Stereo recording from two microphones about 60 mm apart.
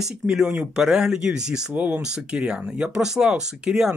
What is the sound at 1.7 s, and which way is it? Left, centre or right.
Speech, right.